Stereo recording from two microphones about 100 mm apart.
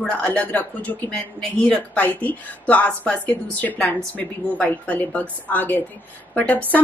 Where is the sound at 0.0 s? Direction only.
10° left (ahead or behind).